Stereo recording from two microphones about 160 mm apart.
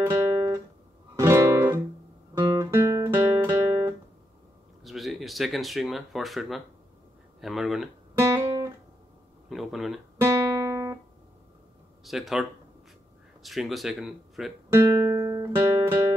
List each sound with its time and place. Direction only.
0.0 s guitar: 15° right (ahead or behind)
1.1 s music: 20° right (ahead or behind)
2.3 s guitar: 20° right (ahead or behind)
4.8 s speech: centre (ahead or behind)
8.1 s guitar: 20° right (ahead or behind)
9.5 s speech: centre (ahead or behind)
10.2 s guitar: 15° right (ahead or behind)
12.0 s speech: centre (ahead or behind)
14.7 s guitar: 15° right (ahead or behind)